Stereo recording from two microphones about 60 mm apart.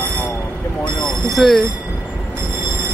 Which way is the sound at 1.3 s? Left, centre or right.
Centre.